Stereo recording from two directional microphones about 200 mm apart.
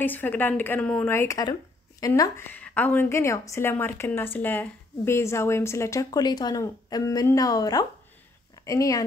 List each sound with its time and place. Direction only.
0.0 s speech: 10° left (ahead or behind)